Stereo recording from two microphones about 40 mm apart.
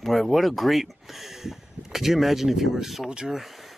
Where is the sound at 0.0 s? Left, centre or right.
Centre.